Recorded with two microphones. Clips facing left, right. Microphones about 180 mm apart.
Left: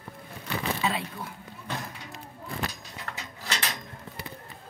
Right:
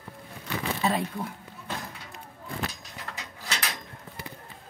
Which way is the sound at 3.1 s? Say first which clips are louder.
Left 1 dB; 15° right (ahead or behind).